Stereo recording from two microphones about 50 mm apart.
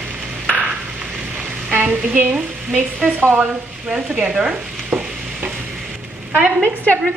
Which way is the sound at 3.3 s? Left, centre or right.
Right.